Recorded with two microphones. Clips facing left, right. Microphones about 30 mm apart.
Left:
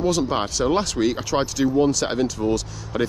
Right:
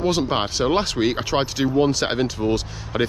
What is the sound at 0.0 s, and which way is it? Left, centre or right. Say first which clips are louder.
Speech: right 1 dB; right.